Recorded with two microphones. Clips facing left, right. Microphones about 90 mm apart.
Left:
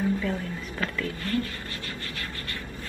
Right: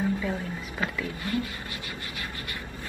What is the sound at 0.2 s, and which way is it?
A woman's voice, 15° right (ahead or behind).